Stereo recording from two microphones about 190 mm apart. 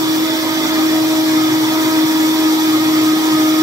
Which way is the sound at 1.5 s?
20° right (ahead or behind).